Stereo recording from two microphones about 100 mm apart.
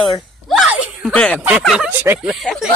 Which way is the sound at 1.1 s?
15° left (ahead or behind).